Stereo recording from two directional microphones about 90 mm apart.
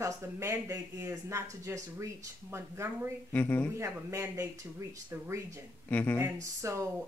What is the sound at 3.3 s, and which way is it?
Speech, 20° left (ahead or behind).